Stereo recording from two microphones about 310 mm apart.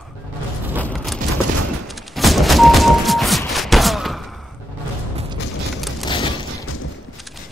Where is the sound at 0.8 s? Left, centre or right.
Centre.